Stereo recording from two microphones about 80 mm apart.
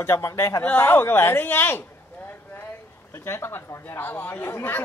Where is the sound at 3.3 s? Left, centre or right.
Left.